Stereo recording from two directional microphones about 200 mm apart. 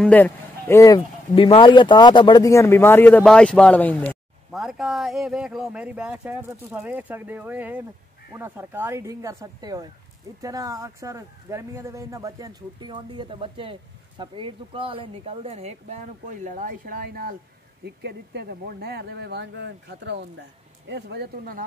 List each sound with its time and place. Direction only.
0.0 s speech: 10° left (ahead or behind); by 21.6 s 50° right (ahead or behind)